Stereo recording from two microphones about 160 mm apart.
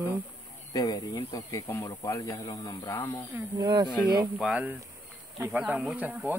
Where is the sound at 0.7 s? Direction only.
25° left (ahead or behind).